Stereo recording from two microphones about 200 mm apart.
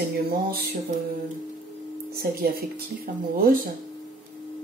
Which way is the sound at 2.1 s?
50° right (ahead or behind).